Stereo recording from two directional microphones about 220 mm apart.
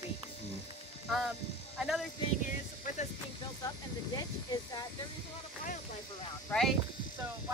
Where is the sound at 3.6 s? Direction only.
15° left (ahead or behind).